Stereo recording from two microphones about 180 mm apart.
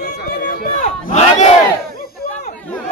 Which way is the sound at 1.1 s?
40° left (ahead or behind).